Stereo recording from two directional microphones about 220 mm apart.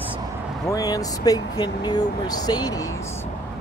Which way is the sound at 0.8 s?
15° left (ahead or behind).